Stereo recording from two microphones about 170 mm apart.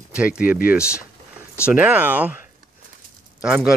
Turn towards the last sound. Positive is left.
turn(degrees=-5)  # may be behind; listen again after turning